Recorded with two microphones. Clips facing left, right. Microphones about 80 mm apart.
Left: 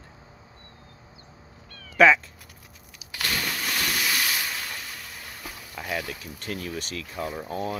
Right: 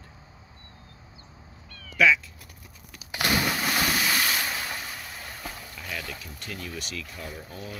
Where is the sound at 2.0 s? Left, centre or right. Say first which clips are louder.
Left 5 dB; left.